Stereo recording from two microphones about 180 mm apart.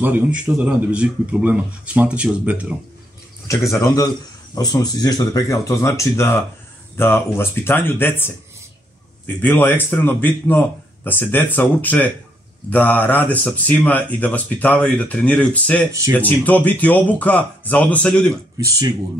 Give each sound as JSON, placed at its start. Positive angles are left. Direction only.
{"t": 0.0, "sound": "speech", "side_deg": -10}
{"t": 3.4, "sound": "speech", "side_deg": 15}